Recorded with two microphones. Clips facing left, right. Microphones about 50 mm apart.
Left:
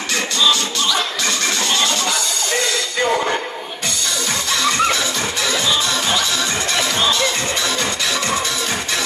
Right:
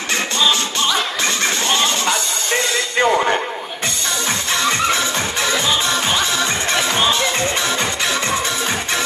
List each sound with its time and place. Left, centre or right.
0.4 s music: right
4.6 s music: right